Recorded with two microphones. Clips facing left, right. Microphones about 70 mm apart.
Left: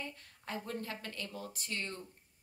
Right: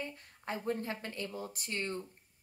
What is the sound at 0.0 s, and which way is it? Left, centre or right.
Speech, right.